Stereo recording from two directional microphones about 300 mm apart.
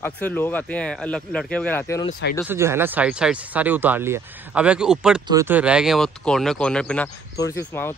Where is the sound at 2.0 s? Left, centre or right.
Left.